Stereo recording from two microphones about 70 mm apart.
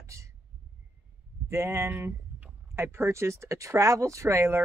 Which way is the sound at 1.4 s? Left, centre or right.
Right.